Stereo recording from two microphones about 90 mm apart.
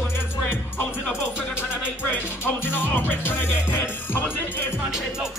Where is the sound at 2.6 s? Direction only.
20° left (ahead or behind).